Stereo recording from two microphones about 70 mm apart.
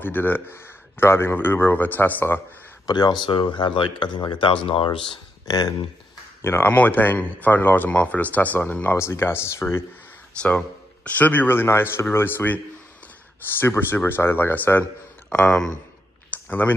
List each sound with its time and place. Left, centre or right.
0.0 s speech: left
2.9 s speech: left
5.5 s speech: left
6.4 s speech: left
8.9 s speech: left
11.1 s speech: left
13.6 s speech: left
15.3 s speech: centre
16.3 s a sound: left